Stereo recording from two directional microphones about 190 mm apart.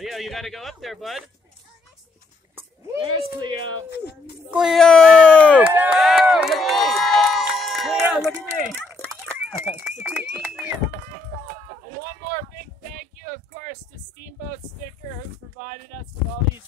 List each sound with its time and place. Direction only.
0.0 s speech: centre (ahead or behind)
3.0 s speech: 25° right (ahead or behind)
4.5 s speech: centre (ahead or behind)
5.6 s crowd: 10° right (ahead or behind)
8.1 s speech: centre (ahead or behind)
8.7 s a sound: 10° left (ahead or behind)
9.6 s speech: 10° right (ahead or behind)
12.9 s a sound: 50° right (ahead or behind)
15.6 s speech: 45° right (ahead or behind)